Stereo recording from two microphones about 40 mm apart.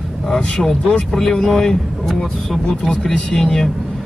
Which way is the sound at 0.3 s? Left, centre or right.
Centre.